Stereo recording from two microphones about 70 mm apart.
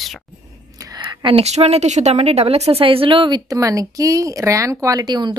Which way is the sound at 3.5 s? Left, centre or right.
Right.